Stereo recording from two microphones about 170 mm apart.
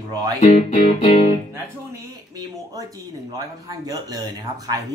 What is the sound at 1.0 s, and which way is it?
Speech, 35° left (ahead or behind).